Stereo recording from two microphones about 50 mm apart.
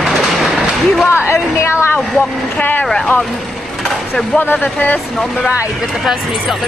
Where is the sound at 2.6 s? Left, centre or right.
Left.